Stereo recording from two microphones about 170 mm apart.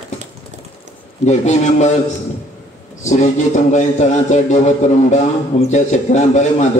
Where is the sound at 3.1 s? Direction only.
45° left (ahead or behind).